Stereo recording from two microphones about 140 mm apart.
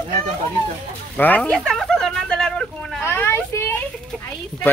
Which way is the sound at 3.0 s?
15° left (ahead or behind).